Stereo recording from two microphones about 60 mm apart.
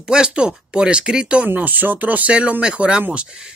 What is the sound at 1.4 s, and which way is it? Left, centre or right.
Speech, right.